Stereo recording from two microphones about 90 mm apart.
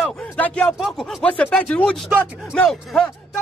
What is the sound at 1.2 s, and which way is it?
Speech, 15° left (ahead or behind).